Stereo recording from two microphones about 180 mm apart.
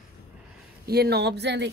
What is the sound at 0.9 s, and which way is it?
Speech, 60° right (ahead or behind).